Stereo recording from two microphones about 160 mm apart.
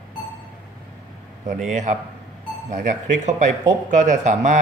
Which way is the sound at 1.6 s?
50° right (ahead or behind).